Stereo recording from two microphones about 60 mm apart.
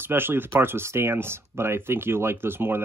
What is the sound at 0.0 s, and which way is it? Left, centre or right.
Speech, right.